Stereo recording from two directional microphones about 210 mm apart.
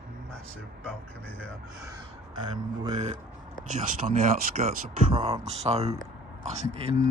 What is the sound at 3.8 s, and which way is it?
Speech, 40° right (ahead or behind).